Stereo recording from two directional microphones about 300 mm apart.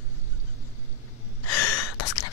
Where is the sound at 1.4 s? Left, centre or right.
Left.